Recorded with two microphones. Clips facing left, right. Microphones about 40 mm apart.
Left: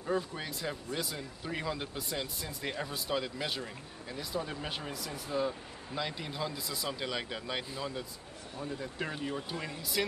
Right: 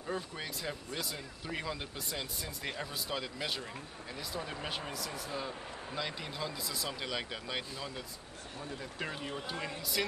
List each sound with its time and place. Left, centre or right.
0.0 s speech: centre